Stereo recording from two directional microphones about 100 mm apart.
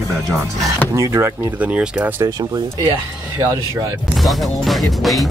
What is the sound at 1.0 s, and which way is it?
Speech, 30° right (ahead or behind).